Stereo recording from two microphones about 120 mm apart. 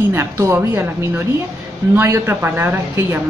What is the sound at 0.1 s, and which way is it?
A woman's voice, 20° right (ahead or behind).